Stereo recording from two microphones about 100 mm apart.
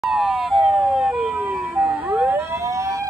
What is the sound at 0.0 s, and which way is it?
Emergency vehicle, centre (ahead or behind).